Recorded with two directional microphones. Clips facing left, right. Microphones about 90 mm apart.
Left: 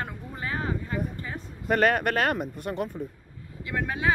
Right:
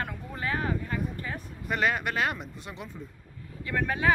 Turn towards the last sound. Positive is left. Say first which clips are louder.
# right 1 dB
turn(degrees=20)  # may be behind; listen again after turning